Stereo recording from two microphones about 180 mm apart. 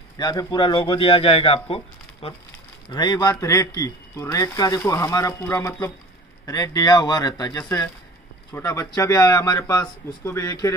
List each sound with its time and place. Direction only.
0.2 s speech: 20° left (ahead or behind)